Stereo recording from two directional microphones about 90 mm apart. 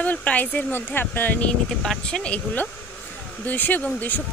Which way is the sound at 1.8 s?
5° left (ahead or behind).